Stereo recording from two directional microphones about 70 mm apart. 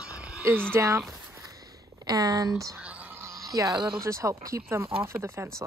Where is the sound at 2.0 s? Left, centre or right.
Right.